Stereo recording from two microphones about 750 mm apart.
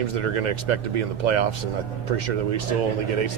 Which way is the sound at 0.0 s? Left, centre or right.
Right.